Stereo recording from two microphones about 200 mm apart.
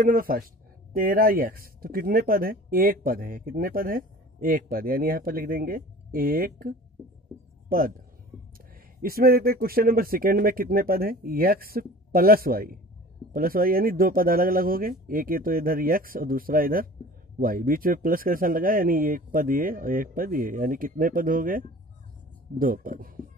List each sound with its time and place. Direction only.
0.0 s speech: 45° right (ahead or behind)